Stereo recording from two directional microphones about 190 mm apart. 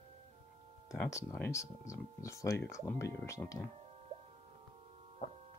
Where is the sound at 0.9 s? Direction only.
15° left (ahead or behind).